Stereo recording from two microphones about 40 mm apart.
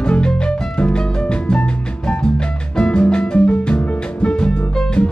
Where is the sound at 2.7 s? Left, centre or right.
Left.